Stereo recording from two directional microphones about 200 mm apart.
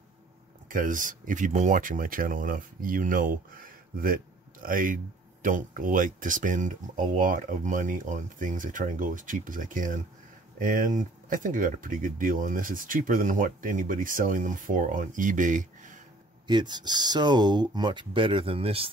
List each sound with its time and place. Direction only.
0.7 s speech: 40° right (ahead or behind)
16.4 s speech: 20° right (ahead or behind)